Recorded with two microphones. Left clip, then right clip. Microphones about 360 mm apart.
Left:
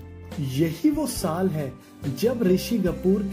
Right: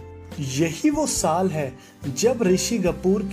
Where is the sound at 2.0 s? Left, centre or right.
Centre.